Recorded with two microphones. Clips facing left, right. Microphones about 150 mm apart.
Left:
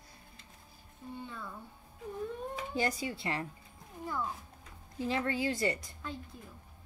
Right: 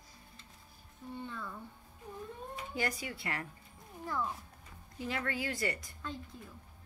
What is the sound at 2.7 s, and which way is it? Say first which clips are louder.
Speech: left 3 dB; 30° left (ahead or behind).